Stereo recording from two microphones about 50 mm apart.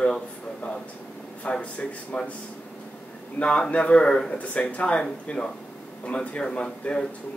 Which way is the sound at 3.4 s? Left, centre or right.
Left.